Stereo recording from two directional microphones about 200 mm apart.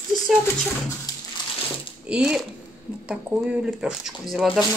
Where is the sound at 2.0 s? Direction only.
5° right (ahead or behind).